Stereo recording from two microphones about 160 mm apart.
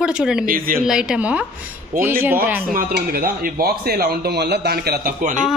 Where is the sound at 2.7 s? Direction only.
65° right (ahead or behind).